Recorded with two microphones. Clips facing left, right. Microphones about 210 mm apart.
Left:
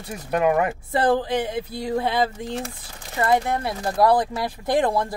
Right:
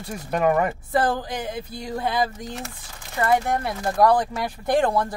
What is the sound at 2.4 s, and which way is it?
Speech, 30° left (ahead or behind).